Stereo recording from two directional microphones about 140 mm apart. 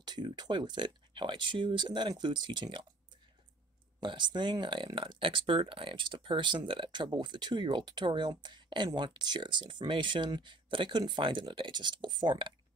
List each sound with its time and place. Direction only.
0.0 s speech: 30° right (ahead or behind)
4.0 s speech: 35° right (ahead or behind)